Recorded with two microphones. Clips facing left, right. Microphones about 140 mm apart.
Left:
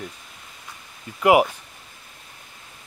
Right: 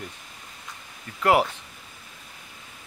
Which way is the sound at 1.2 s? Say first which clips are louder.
Left 4 dB; 10° left (ahead or behind).